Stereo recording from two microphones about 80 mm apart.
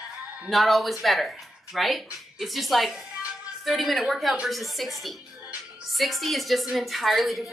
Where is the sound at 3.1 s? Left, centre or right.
Centre.